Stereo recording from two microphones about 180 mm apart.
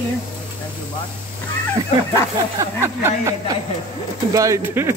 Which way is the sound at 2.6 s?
15° right (ahead or behind).